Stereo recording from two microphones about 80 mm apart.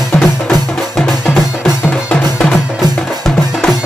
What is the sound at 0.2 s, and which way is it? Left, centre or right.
Music, centre.